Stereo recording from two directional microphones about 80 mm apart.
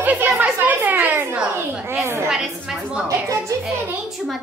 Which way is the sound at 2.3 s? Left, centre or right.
Centre.